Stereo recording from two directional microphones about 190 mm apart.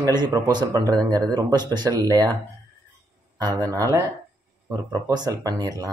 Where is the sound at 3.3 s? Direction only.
20° right (ahead or behind).